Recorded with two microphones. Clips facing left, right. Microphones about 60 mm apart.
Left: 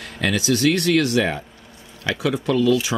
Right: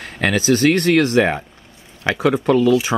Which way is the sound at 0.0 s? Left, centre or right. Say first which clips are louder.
Right 4 dB; right.